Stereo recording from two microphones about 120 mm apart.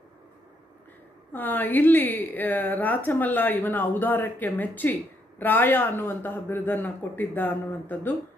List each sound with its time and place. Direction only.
1.3 s a woman's voice: 15° left (ahead or behind)